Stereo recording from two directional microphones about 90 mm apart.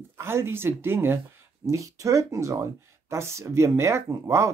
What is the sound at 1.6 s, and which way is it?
Speech, 35° right (ahead or behind).